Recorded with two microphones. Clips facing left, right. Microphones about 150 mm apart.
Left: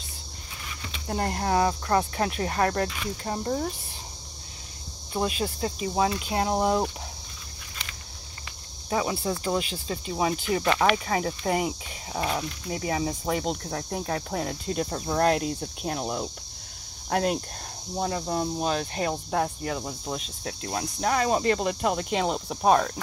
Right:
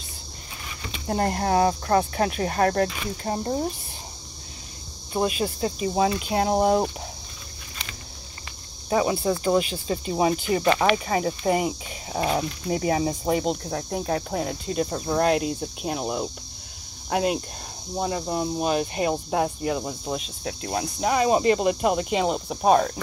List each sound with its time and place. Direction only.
1.0 s cricket: 35° right (ahead or behind)
2.4 s speech: 30° right (ahead or behind)
5.4 s speech: 30° right (ahead or behind)
8.8 s speech: 20° right (ahead or behind)
10.6 s cricket: 10° right (ahead or behind)
11.1 s speech: 25° right (ahead or behind)
12.1 s cricket: 25° right (ahead or behind)
13.2 s speech: 20° right (ahead or behind)
13.7 s cricket: 10° right (ahead or behind)
17.1 s speech: 5° right (ahead or behind)
17.9 s cricket: 10° right (ahead or behind)